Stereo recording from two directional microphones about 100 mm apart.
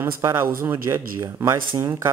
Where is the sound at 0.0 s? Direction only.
25° right (ahead or behind).